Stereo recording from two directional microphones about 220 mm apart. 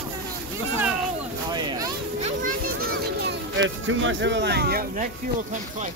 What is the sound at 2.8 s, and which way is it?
Music, 55° right (ahead or behind).